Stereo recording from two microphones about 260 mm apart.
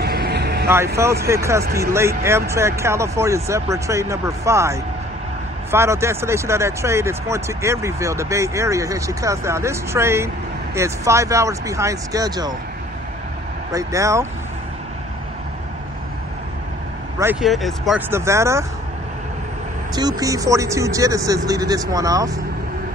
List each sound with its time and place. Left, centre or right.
0.0 s vehicle: right
0.9 s speech: centre
13.7 s speech: centre
17.2 s speech: centre
20.0 s speech: centre